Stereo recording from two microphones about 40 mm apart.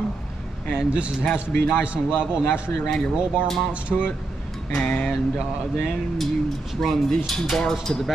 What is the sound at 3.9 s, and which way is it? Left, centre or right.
Speech, centre.